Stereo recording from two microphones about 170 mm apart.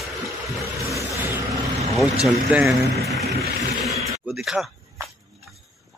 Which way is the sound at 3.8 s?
Centre (ahead or behind).